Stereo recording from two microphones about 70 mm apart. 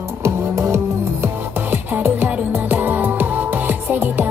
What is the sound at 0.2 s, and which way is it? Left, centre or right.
Music, right.